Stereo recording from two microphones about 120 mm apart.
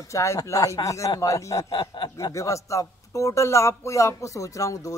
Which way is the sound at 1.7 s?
40° left (ahead or behind).